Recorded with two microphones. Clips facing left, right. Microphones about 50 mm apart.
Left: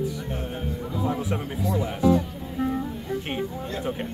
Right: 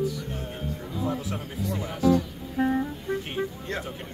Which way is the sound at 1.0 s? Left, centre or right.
Left.